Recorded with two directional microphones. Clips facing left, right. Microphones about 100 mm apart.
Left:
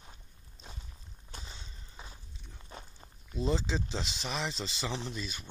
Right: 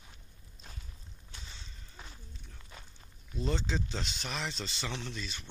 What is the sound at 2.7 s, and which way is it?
Walk, 30° left (ahead or behind).